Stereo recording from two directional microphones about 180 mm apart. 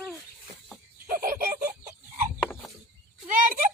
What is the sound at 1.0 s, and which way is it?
Fowl, 50° right (ahead or behind).